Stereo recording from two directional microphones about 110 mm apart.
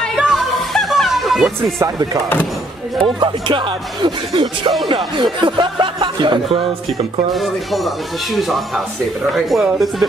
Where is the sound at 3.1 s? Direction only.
50° right (ahead or behind).